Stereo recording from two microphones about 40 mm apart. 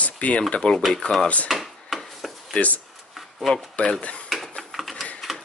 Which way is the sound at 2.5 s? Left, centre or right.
Left.